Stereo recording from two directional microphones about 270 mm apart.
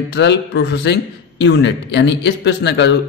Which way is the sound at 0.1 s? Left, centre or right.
Left.